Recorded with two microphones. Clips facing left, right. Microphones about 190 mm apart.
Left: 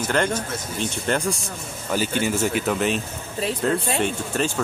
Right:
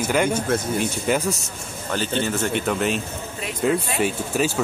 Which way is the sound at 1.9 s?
10° left (ahead or behind).